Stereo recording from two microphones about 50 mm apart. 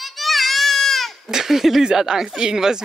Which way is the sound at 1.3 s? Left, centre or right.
Centre.